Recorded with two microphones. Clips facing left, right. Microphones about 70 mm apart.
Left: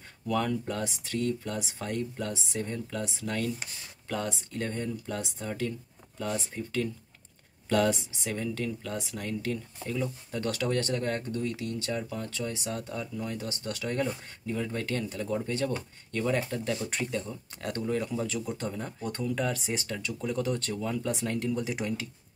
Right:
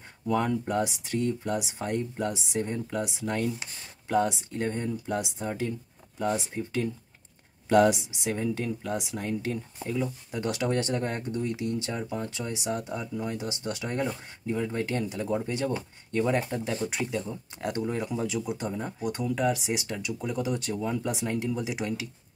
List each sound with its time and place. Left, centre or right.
0.3 s speech: centre
16.9 s speech: centre